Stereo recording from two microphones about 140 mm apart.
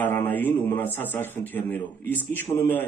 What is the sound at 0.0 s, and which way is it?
A man's voice, 15° left (ahead or behind).